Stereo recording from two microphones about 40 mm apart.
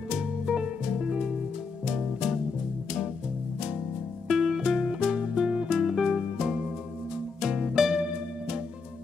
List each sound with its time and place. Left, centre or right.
0.2 s music: centre
4.3 s music: centre